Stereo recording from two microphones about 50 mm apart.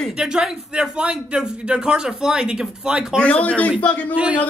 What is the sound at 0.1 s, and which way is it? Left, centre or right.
A man's voice, centre.